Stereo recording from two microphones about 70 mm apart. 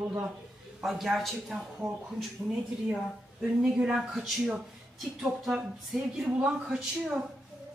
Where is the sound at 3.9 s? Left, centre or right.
Centre.